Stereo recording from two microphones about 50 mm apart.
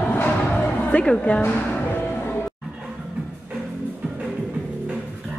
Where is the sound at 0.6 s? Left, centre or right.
Left.